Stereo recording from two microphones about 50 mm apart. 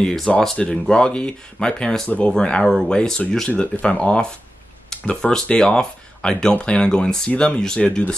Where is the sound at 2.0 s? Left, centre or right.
Left.